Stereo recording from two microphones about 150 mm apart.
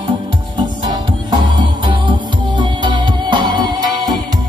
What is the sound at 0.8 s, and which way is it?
Music, 30° right (ahead or behind).